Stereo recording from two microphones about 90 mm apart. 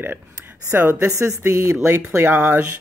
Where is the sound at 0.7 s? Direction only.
25° right (ahead or behind).